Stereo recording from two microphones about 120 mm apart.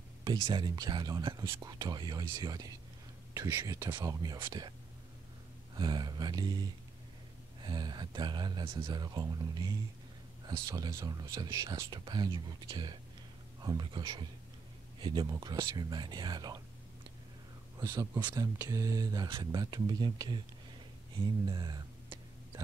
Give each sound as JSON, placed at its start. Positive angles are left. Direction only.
{"t": 0.2, "sound": "speech", "side_deg": -40}
{"t": 5.8, "sound": "speech", "side_deg": -35}
{"t": 17.7, "sound": "speech", "side_deg": -30}
{"t": 21.5, "sound": "a sound", "side_deg": -35}